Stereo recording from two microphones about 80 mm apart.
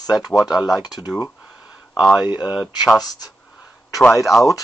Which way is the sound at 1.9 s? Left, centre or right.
Centre.